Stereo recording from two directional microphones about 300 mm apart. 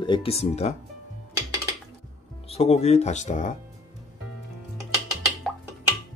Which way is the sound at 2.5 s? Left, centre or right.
Centre.